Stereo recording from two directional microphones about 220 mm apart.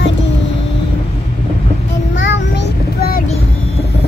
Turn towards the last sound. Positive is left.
turn(degrees=50)  # may be behind; listen again after turning